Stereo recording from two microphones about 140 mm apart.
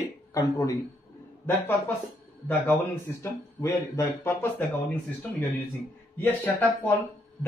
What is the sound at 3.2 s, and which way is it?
Speech, 20° left (ahead or behind).